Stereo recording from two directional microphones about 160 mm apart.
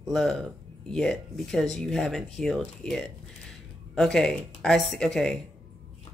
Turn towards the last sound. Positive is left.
turn(degrees=5)  # may be behind; listen again after turning